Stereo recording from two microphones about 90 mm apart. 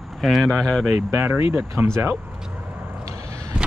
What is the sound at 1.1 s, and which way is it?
Speech, 25° right (ahead or behind).